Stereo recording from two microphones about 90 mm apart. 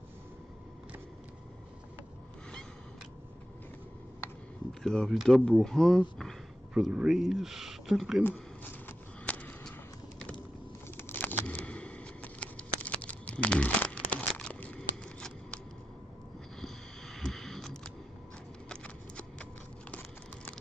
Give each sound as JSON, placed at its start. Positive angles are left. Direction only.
{"t": 4.8, "sound": "speech", "side_deg": 5}
{"t": 6.7, "sound": "speech", "side_deg": -10}
{"t": 8.2, "sound": "a sound", "side_deg": 20}
{"t": 12.8, "sound": "crumpling", "side_deg": 15}
{"t": 16.6, "sound": "a sound", "side_deg": 5}
{"t": 18.7, "sound": "clip-clop", "side_deg": 15}